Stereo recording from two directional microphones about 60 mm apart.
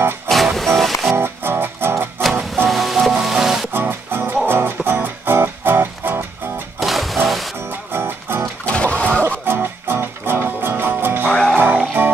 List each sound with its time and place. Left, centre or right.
0.3 s music: centre
1.1 s music: right
2.5 s music: centre
3.7 s music: right
6.8 s music: centre
7.9 s music: right
8.6 s music: centre
9.5 s music: right